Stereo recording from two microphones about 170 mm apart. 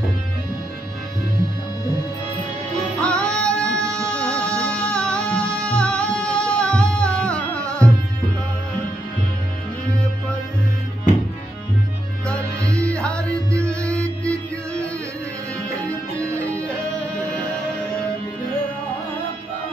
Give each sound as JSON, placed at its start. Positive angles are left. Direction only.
{"t": 3.0, "sound": "music", "side_deg": 5}
{"t": 12.6, "sound": "music", "side_deg": -15}
{"t": 12.9, "sound": "music", "side_deg": 5}